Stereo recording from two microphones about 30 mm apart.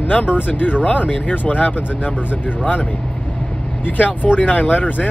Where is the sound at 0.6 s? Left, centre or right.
Left.